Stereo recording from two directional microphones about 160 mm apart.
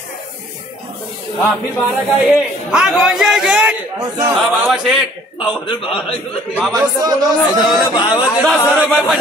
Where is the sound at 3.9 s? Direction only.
20° right (ahead or behind).